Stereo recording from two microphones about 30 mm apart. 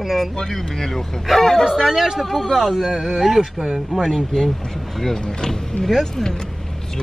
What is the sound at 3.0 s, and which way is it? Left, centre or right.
Speech, centre.